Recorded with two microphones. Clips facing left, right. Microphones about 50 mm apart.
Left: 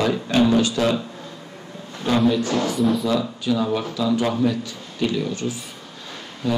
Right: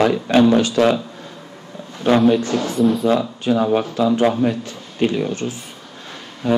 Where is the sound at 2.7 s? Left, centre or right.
Centre.